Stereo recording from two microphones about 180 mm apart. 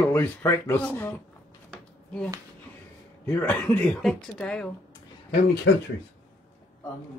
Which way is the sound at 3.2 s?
10° left (ahead or behind).